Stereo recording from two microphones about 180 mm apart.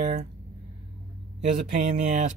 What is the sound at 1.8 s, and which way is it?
Speech, 40° right (ahead or behind).